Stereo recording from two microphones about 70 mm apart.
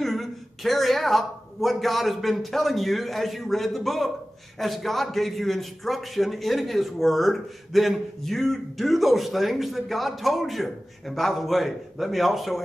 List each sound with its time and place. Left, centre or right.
0.0 s a man's voice: centre